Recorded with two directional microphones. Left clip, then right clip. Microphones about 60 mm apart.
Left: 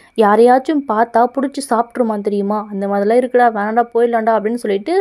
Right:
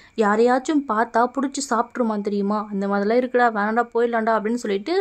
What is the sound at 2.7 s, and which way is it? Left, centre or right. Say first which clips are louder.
Speech: left 7 dB; left.